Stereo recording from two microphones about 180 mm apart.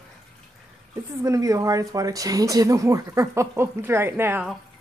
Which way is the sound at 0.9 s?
20° right (ahead or behind).